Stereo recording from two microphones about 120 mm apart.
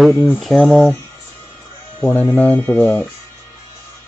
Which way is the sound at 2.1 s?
15° left (ahead or behind).